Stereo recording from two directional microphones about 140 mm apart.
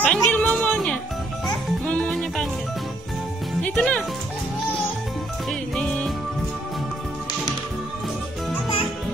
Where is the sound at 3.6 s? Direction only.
5° left (ahead or behind).